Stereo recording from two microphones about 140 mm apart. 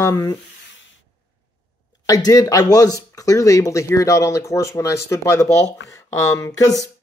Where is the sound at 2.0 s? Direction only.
25° left (ahead or behind).